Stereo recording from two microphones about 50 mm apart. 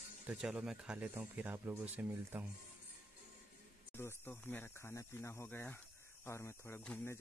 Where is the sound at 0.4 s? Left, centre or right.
Centre.